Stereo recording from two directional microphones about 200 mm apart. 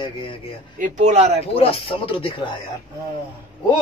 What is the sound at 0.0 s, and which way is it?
Speech, 25° left (ahead or behind).